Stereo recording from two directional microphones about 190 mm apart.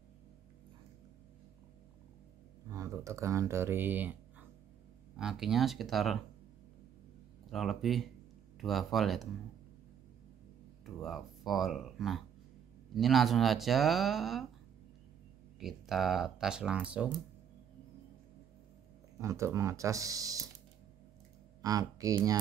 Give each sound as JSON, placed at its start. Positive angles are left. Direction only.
{"t": 2.7, "sound": "speech", "side_deg": -15}
{"t": 7.5, "sound": "speech", "side_deg": 0}
{"t": 11.0, "sound": "speech", "side_deg": 0}
{"t": 15.6, "sound": "speech", "side_deg": 0}
{"t": 19.1, "sound": "speech", "side_deg": -15}
{"t": 21.5, "sound": "speech", "side_deg": -20}